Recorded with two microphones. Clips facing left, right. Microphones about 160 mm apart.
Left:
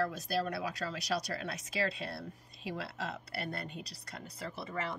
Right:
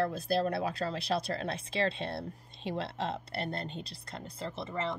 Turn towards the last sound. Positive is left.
turn(degrees=-25)  # may be behind; listen again after turning